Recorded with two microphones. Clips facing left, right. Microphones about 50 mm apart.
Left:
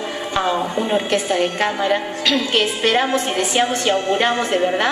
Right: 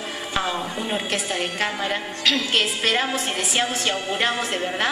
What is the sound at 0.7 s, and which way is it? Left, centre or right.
A woman's voice, centre.